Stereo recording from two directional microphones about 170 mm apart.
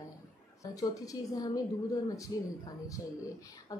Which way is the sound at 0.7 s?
20° left (ahead or behind).